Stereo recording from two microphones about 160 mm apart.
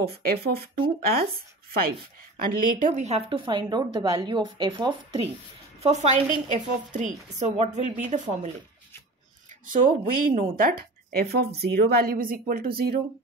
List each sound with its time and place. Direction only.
0.0 s a woman's voice: 75° right (ahead or behind)
3.0 s a woman's voice: 40° right (ahead or behind)
5.8 s a woman's voice: 45° right (ahead or behind)
9.7 s a woman's voice: 60° right (ahead or behind)